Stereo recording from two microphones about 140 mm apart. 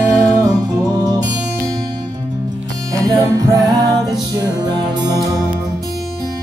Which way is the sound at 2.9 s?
25° right (ahead or behind).